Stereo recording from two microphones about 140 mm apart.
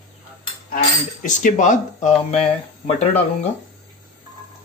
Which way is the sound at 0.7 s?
65° left (ahead or behind).